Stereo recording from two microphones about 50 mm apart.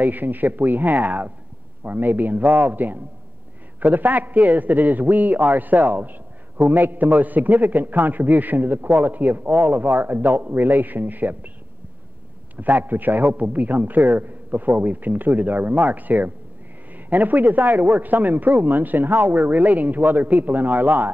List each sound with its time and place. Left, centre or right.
0.0 s a man's voice: right
12.5 s a man's voice: right